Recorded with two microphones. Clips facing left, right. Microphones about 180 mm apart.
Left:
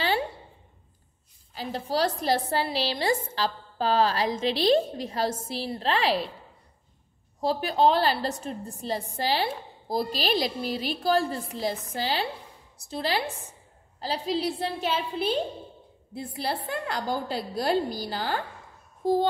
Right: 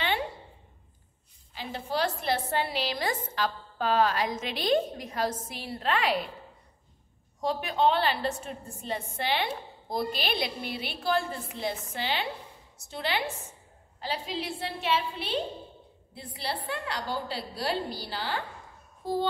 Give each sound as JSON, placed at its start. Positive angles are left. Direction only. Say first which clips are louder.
{"t": 1.5, "sound": "a woman's voice", "louder": "left 4 dB", "side_deg": 40}
{"t": 7.3, "sound": "a woman's voice", "louder": "left 3 dB", "side_deg": 35}